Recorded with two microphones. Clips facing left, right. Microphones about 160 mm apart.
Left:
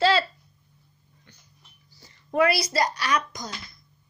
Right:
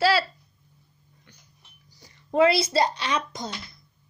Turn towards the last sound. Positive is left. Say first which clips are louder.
# left 1 dB
turn(degrees=-25)  # may be behind; listen again after turning